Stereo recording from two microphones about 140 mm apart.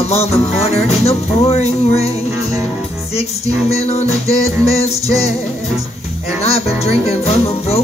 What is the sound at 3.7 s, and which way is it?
Music, 50° left (ahead or behind).